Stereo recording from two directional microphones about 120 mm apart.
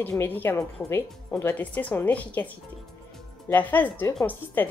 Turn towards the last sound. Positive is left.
turn(degrees=15)  # may be behind; listen again after turning